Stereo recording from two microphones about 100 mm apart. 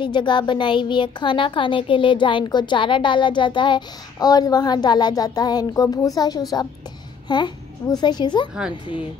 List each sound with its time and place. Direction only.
0.0 s a child's voice: 50° left (ahead or behind)